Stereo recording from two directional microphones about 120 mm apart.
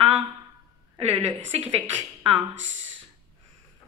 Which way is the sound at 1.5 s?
60° right (ahead or behind).